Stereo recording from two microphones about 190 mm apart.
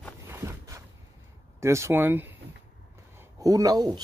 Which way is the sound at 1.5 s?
15° right (ahead or behind).